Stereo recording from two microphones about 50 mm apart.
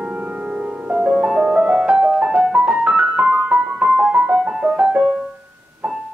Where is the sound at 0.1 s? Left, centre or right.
Right.